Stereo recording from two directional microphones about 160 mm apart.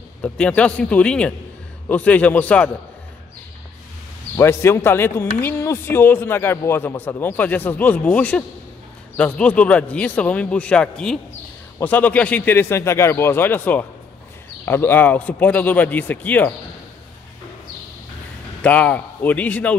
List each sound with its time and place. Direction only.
0.2 s a man's voice: 5° left (ahead or behind)
4.4 s a man's voice: 15° left (ahead or behind)
18.6 s a man's voice: 10° left (ahead or behind)